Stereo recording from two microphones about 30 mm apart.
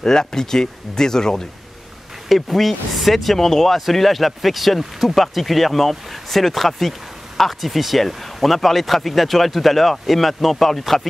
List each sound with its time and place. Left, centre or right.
0.0 s speech: left
2.2 s speech: centre
3.3 s speech: centre